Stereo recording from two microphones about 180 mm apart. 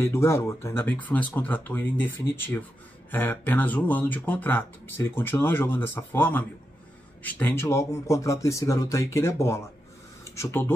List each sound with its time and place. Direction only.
0.0 s speech: 15° left (ahead or behind)